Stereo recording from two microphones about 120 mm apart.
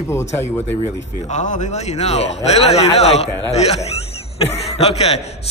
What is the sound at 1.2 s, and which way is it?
A man's voice, 85° left.